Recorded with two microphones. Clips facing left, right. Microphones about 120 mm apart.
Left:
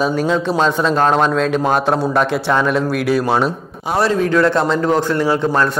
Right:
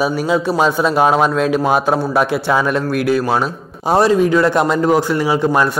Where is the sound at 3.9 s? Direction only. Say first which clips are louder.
Right 2 dB; 15° right (ahead or behind).